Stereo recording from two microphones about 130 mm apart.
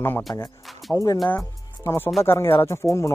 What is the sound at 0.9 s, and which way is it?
Speech, 25° left (ahead or behind).